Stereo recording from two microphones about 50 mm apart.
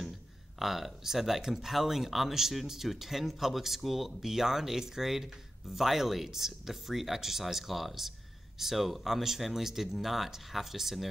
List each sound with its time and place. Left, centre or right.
0.6 s speech: centre